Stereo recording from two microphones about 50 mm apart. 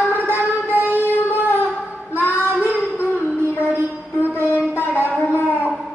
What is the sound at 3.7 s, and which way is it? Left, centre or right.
Music, right.